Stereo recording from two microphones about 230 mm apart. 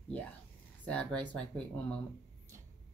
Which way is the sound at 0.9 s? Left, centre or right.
Centre.